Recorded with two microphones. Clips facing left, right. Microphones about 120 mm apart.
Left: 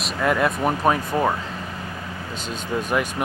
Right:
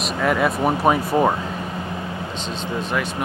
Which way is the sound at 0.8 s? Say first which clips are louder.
Right 3 dB; 15° right (ahead or behind).